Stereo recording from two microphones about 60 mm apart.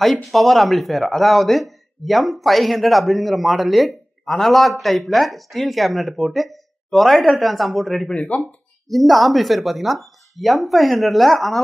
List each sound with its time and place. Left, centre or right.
0.0 s speech: centre
8.1 s speech: centre
8.8 s speech: centre